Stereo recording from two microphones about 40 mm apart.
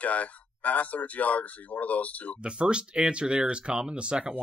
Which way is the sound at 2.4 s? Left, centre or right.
Right.